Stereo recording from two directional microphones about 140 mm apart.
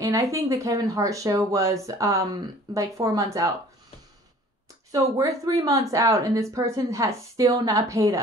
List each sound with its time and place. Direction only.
0.0 s speech: 25° right (ahead or behind)
4.9 s speech: 25° right (ahead or behind)